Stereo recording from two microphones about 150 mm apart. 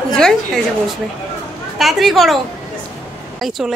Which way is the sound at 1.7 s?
Centre (ahead or behind).